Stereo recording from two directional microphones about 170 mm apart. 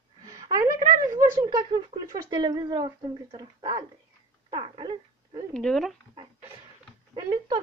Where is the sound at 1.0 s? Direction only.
25° right (ahead or behind).